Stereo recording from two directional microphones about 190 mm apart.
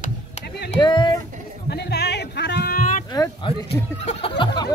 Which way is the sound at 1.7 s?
60° left (ahead or behind).